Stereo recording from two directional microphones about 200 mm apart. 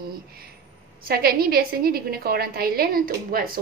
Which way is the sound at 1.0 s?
50° right (ahead or behind).